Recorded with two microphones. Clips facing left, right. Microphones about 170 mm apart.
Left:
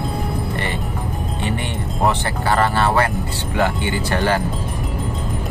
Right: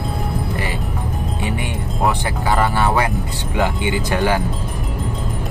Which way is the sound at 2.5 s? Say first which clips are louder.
Even; 15° right (ahead or behind).